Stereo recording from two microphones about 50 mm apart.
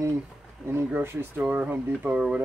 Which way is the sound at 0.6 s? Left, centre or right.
Centre.